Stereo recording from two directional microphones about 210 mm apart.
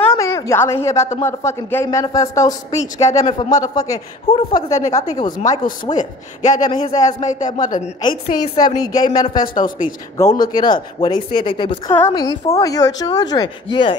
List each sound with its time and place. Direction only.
0.1 s a sound: 15° left (ahead or behind)
1.1 s speech: 15° left (ahead or behind)
5.9 s a man's voice: 35° left (ahead or behind)
6.6 s speech: 20° left (ahead or behind)
7.2 s a man's voice: 35° left (ahead or behind)
8.0 s speech: 20° left (ahead or behind)
9.5 s a man's voice: 40° left (ahead or behind)
10.1 s speech: 15° left (ahead or behind)